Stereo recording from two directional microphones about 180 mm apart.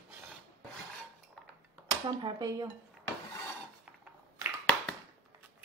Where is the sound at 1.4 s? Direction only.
5° left (ahead or behind).